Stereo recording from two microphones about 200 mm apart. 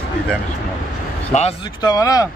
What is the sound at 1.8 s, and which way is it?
Speech, 20° left (ahead or behind).